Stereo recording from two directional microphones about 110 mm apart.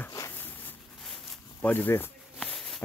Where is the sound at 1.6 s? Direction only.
15° left (ahead or behind).